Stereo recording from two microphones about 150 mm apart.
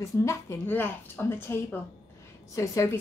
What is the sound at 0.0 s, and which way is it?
A woman's voice, 20° left (ahead or behind).